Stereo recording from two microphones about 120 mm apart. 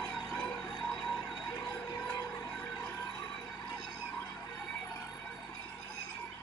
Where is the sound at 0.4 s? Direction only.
5° left (ahead or behind).